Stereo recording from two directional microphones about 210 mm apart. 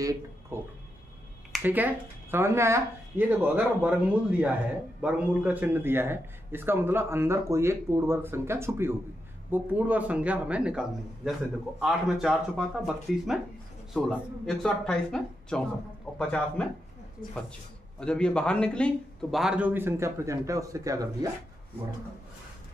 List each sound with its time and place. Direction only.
0.0 s a man's voice: 15° right (ahead or behind); by 16.6 s 5° left (ahead or behind)
18.0 s a man's voice: 5° left (ahead or behind); by 21.3 s 15° right (ahead or behind)